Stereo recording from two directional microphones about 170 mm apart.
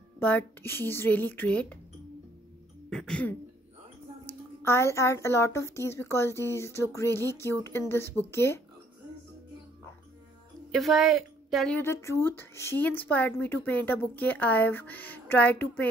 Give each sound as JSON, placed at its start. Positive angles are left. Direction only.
{"t": 0.2, "sound": "speech", "side_deg": 10}
{"t": 2.9, "sound": "speech", "side_deg": 5}
{"t": 4.6, "sound": "speech", "side_deg": 15}
{"t": 10.7, "sound": "a woman's voice", "side_deg": 0}
{"t": 11.8, "sound": "speech", "side_deg": 15}